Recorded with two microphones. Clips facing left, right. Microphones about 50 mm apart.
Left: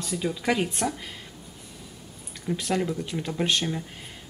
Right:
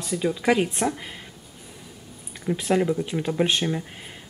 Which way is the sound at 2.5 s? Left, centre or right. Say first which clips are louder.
Right 5 dB; right.